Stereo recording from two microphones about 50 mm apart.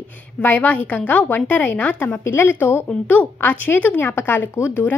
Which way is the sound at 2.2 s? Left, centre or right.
Left.